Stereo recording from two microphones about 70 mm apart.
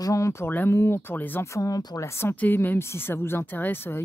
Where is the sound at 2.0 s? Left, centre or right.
Left.